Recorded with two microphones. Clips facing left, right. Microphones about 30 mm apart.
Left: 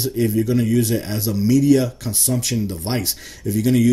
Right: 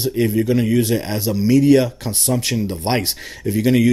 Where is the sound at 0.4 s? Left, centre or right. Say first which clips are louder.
Right 1 dB; right.